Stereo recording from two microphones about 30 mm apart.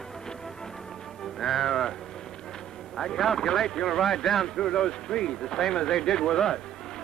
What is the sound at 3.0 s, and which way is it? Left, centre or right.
A man's voice, centre.